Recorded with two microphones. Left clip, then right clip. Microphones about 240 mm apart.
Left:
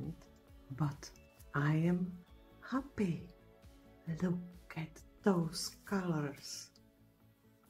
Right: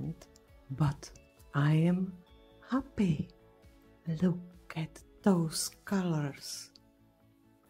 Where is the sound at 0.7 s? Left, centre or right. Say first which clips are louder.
Right 6 dB; right.